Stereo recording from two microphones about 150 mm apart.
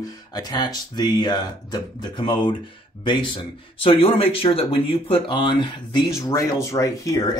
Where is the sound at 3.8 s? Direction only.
40° left (ahead or behind).